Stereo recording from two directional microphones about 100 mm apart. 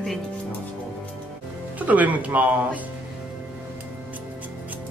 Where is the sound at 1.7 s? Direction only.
15° right (ahead or behind).